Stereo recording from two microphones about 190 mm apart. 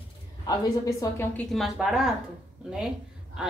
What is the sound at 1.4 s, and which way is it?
A woman's voice, centre (ahead or behind).